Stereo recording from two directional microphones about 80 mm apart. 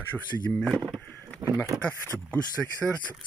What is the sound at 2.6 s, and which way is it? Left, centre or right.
Speech, centre.